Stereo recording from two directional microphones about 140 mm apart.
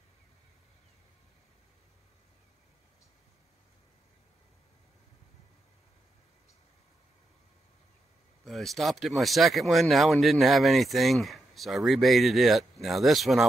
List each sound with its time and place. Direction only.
8.5 s speech: centre (ahead or behind)